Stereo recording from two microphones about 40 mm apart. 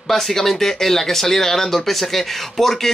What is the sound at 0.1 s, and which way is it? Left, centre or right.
Speech, centre.